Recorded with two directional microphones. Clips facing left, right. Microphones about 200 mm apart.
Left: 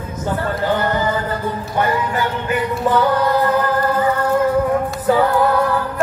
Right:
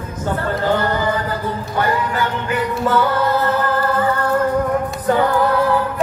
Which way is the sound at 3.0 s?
15° left (ahead or behind).